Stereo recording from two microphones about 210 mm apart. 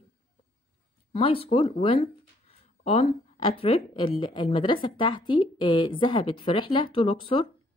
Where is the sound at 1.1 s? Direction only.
25° left (ahead or behind).